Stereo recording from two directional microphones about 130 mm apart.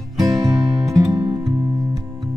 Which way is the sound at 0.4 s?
25° right (ahead or behind).